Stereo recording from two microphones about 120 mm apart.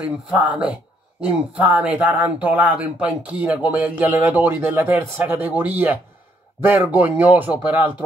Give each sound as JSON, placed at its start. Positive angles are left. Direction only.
{"t": 0.3, "sound": "speech", "side_deg": -10}